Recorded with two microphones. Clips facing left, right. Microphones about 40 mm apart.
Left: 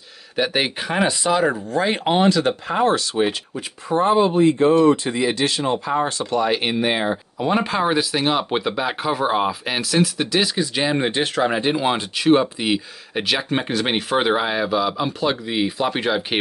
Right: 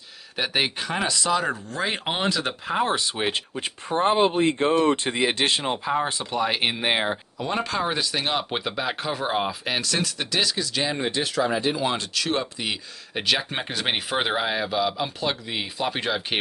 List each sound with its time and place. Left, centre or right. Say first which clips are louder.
0.4 s speech: left 4 dB; centre
0.7 s speech: left 5 dB; centre
3.3 s speech: left 2 dB; right
6.0 s speech: left 5 dB; centre
7.3 s speech: left 7 dB; centre
11.1 s speech: left 4 dB; left; by 13.2 s centre
13.2 s speech: left 3 dB; centre